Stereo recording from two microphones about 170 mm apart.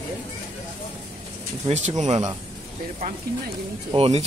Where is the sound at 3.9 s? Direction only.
35° right (ahead or behind).